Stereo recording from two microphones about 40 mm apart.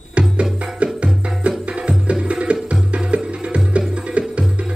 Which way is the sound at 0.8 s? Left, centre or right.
Right.